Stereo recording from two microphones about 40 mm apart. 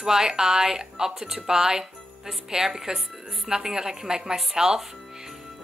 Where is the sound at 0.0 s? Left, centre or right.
Centre.